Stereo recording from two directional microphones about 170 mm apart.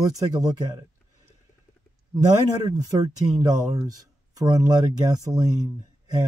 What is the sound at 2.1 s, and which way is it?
Speech, 20° right (ahead or behind).